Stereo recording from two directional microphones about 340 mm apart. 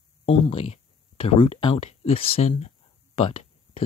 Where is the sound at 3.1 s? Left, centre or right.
Centre.